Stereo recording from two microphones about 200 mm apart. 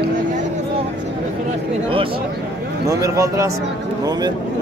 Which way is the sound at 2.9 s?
15° right (ahead or behind).